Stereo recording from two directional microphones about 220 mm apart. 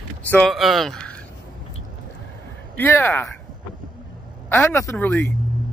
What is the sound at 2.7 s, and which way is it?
Speech, 10° left (ahead or behind).